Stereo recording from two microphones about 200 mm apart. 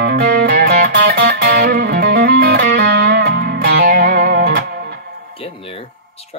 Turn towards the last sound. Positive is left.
turn(degrees=30)  # may be behind; listen again after turning